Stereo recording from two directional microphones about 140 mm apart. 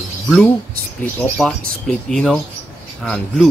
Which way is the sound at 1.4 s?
5° left (ahead or behind).